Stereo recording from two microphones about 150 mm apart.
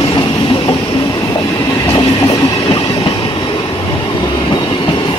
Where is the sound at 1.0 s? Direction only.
25° left (ahead or behind).